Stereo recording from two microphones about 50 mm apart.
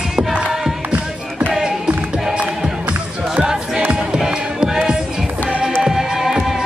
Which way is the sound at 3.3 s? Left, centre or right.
Centre.